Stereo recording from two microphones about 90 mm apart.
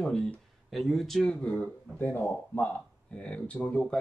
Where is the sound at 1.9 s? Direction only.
25° left (ahead or behind).